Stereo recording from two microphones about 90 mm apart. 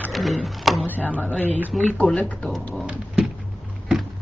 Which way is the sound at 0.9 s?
15° left (ahead or behind).